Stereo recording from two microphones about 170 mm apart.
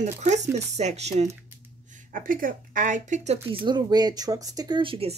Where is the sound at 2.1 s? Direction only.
55° right (ahead or behind).